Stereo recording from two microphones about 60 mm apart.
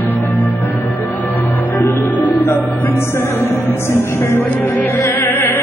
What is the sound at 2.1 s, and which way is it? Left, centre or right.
Music, left.